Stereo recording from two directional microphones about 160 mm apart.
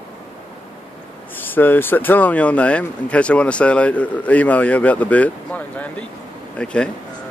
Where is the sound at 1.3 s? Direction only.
10° left (ahead or behind).